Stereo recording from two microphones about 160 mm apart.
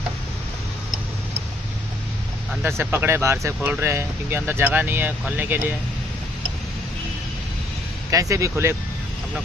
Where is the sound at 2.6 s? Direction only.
10° right (ahead or behind).